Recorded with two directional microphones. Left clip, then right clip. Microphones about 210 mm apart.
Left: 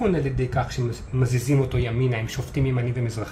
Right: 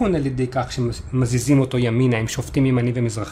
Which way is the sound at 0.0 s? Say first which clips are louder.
Right 3 dB; 45° right (ahead or behind).